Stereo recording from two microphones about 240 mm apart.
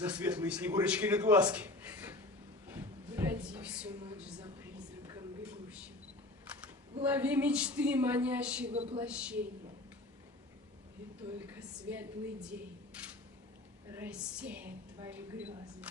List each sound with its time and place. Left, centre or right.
0.0 s a man's voice: centre
4.4 s a sound: centre
7.1 s a man's voice: centre
8.7 s speech: right
9.0 s a man's voice: centre
11.3 s a man's voice: centre